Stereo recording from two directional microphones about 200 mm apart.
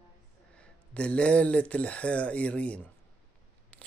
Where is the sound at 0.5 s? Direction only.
5° left (ahead or behind).